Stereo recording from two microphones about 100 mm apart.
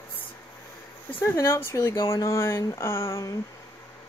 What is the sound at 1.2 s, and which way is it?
Speech, 25° left (ahead or behind).